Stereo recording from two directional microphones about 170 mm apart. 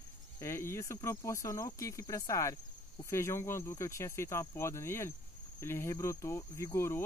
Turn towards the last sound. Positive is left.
turn(degrees=15)  # may be behind; listen again after turning